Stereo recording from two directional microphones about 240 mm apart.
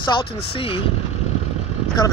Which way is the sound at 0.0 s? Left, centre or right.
Left.